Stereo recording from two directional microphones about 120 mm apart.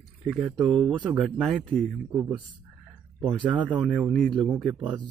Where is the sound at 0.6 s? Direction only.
45° right (ahead or behind).